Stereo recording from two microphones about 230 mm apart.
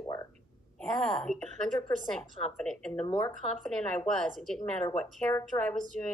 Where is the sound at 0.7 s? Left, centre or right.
Centre.